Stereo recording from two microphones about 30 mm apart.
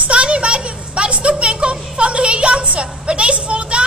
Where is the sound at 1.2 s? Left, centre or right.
Right.